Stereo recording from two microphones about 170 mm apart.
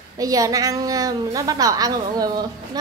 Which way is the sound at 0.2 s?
20° right (ahead or behind).